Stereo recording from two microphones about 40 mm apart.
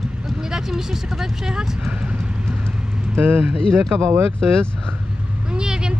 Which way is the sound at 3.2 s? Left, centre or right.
Right.